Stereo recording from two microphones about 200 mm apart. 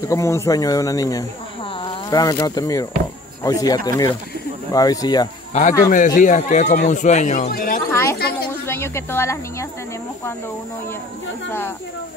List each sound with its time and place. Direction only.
0.1 s speech: 15° left (ahead or behind)
5.5 s a man's voice: 35° left (ahead or behind)
7.9 s a sound: 15° left (ahead or behind)
8.6 s speech: 10° left (ahead or behind)